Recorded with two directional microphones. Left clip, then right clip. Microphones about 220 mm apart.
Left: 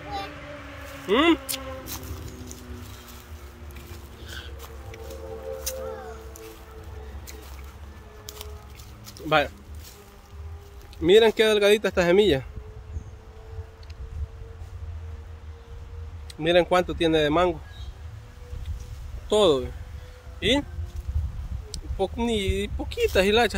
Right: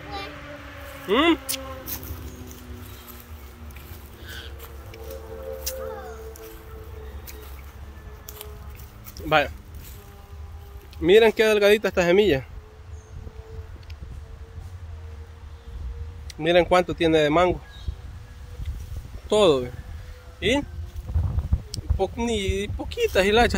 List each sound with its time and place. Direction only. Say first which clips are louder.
1.0 s speech: even; 15° right (ahead or behind)
5.7 s music: right 1 dB; 5° right (ahead or behind)
9.1 s a sound: right 1 dB; 5° right (ahead or behind)
11.0 s speech: right 1 dB; 10° right (ahead or behind)
16.3 s speech: right 2 dB; 20° right (ahead or behind)
19.2 s speech: right 2 dB; 15° right (ahead or behind)
21.7 s speech: right 1 dB; 10° right (ahead or behind)